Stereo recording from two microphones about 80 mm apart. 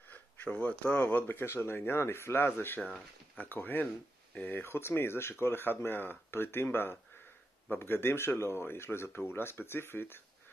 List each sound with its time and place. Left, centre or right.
0.1 s speech: left